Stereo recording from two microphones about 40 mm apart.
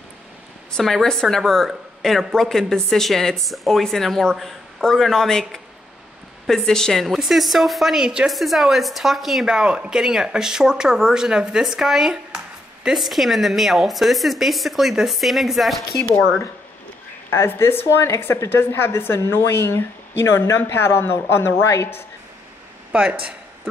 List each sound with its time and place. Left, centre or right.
0.7 s a woman's voice: centre
7.2 s a woman's voice: centre
8.0 s speech: right
8.3 s a woman's voice: centre
9.5 s a woman's voice: right; by 16.1 s centre
17.3 s a woman's voice: left
22.9 s speech: right